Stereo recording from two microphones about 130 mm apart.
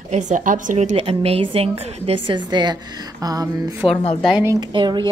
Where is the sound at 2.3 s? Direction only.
35° right (ahead or behind).